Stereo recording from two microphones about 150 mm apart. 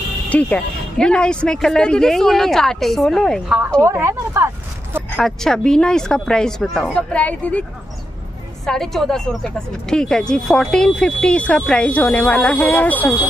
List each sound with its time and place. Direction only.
0.3 s a woman's voice: 10° left (ahead or behind)
3.8 s speech: 15° right (ahead or behind)
5.1 s a woman's voice: 5° left (ahead or behind)
8.6 s a woman's voice: 5° left (ahead or behind)